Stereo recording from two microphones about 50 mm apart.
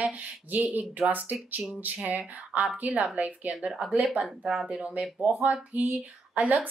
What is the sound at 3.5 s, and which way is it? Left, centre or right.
Speech, centre.